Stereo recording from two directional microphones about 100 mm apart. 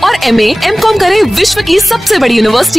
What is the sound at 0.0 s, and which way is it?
A woman's voice, centre (ahead or behind).